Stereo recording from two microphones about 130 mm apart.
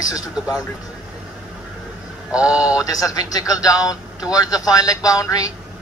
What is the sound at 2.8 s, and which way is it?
Speech, 25° left (ahead or behind).